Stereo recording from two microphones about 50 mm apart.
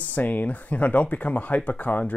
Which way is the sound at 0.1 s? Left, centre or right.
Left.